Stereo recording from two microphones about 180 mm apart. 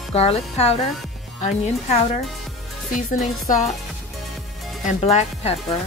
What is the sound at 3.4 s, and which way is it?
Music, 45° left (ahead or behind).